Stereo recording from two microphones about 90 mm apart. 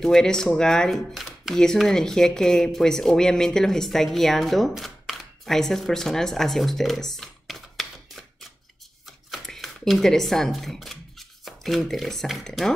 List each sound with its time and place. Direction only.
0.0 s speech: 5° left (ahead or behind)
9.3 s speech: centre (ahead or behind)